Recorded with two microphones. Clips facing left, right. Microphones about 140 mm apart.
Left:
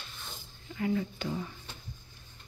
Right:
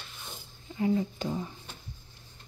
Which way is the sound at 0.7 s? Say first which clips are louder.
Right 3 dB; 25° right (ahead or behind).